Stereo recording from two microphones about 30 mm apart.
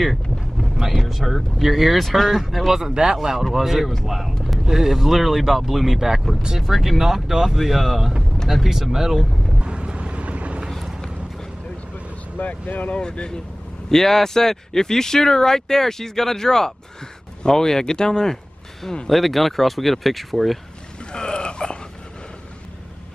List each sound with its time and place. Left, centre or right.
0.6 s speech: centre
2.7 s speech: right
3.2 s speech: centre
8.9 s speech: centre
9.6 s vehicle: right
12.4 s speech: left
12.9 s speech: left
13.8 s speech: centre
18.3 s a sound: centre
19.0 s speech: centre
21.1 s a sound: left